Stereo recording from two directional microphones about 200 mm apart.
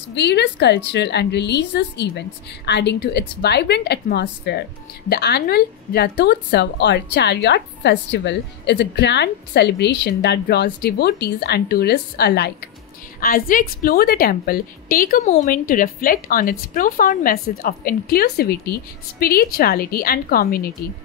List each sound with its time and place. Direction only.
0.1 s a woman's voice: 55° left (ahead or behind)